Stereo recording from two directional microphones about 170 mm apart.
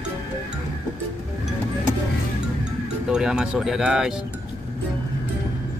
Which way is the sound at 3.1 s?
5° right (ahead or behind).